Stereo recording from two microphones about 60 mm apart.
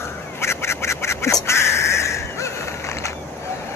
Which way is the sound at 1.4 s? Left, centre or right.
Left.